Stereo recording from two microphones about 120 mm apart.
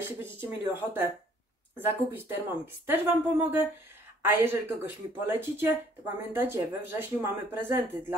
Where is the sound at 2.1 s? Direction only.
20° right (ahead or behind).